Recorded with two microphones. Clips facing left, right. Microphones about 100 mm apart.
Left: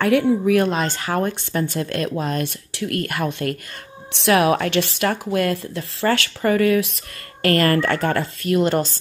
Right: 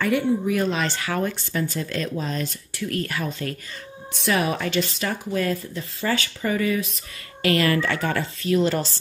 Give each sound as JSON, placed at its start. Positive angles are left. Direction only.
{"t": 0.0, "sound": "speech", "side_deg": 70}
{"t": 0.7, "sound": "speech", "side_deg": 45}
{"t": 4.1, "sound": "speech", "side_deg": 80}
{"t": 7.4, "sound": "speech", "side_deg": 50}